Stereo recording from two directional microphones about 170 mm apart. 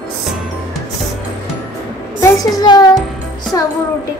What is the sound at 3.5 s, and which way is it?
Music, 20° left (ahead or behind).